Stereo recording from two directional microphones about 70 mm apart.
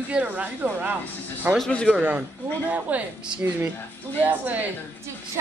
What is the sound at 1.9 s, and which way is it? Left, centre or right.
A woman's voice, centre.